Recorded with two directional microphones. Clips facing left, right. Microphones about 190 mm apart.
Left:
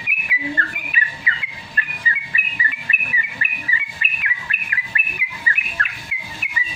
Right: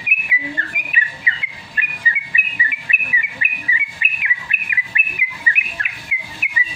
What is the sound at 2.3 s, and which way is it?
Bird, 10° right (ahead or behind).